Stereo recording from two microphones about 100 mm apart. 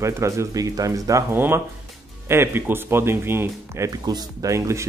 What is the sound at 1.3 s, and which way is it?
Speech, 20° right (ahead or behind).